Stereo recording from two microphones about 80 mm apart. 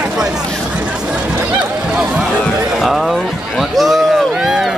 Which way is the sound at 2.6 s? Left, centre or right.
Centre.